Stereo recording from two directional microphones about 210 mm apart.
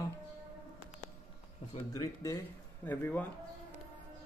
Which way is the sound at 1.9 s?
15° left (ahead or behind).